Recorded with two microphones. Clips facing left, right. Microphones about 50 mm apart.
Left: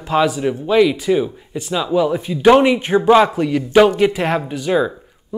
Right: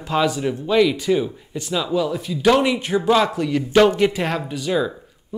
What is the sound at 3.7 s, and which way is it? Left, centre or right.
Speech, centre.